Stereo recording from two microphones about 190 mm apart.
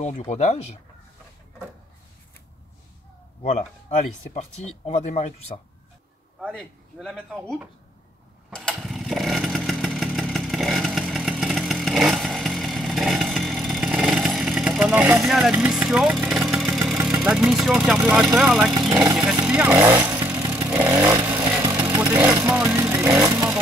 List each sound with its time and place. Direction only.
0.0 s speech: 35° left (ahead or behind)
4.3 s speech: 35° left (ahead or behind)
6.4 s speech: centre (ahead or behind)
8.5 s motorcycle: centre (ahead or behind)
16.7 s vehicle: 15° right (ahead or behind)
17.5 s speech: 5° right (ahead or behind)
20.5 s vehicle: 10° right (ahead or behind)